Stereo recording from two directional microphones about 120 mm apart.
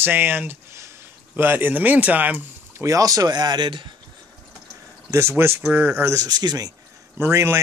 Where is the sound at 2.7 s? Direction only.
25° right (ahead or behind).